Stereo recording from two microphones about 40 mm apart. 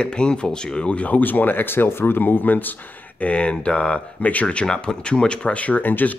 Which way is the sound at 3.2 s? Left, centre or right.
Left.